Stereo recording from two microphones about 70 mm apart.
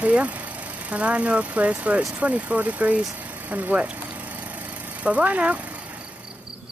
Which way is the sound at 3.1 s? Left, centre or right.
Right.